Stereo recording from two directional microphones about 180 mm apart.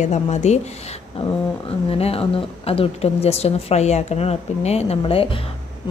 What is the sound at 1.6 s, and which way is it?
A woman's voice, 30° left (ahead or behind).